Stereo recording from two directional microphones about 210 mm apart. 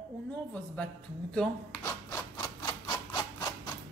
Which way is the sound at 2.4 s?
15° left (ahead or behind).